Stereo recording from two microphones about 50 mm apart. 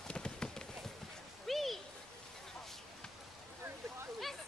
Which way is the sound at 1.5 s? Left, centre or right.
Centre.